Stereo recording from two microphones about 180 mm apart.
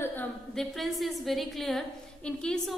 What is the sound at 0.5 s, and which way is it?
A woman's voice, centre (ahead or behind).